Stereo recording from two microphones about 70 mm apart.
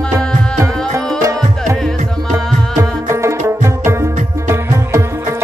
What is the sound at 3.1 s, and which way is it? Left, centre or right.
Music, right.